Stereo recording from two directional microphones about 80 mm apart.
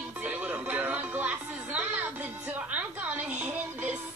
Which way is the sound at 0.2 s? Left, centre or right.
Centre.